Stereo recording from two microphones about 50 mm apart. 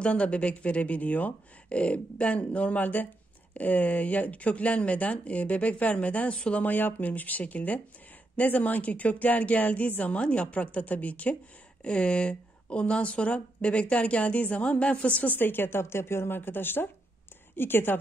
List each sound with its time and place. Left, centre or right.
0.0 s speech: left
6.6 s speech: left
15.3 s a woman's voice: left